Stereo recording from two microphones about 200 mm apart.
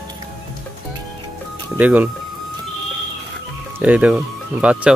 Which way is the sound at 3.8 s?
5° right (ahead or behind).